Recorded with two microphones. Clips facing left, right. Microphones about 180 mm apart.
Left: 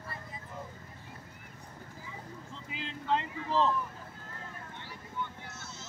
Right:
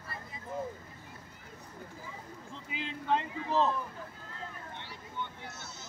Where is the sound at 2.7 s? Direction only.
60° right (ahead or behind).